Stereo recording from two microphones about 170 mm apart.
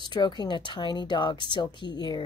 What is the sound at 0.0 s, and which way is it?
Speech, 25° left (ahead or behind).